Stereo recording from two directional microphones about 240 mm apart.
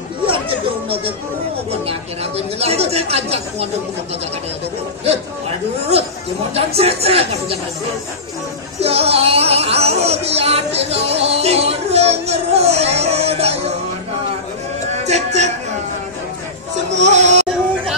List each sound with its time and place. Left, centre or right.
0.3 s children playing: right
1.7 s speech: right
5.9 s speech: right
8.8 s music: right
15.0 s music: right
17.0 s music: right